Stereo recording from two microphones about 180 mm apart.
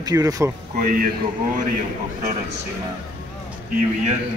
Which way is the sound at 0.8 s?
50° right (ahead or behind).